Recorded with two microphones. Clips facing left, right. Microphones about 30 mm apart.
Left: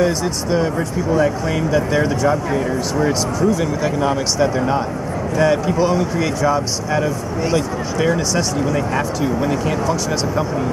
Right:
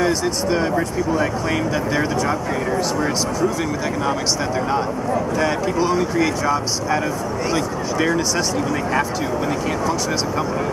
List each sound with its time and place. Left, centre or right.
0.0 s speech: centre